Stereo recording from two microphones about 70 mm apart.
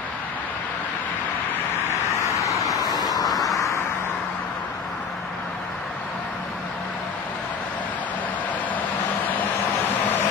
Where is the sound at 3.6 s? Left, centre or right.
Left.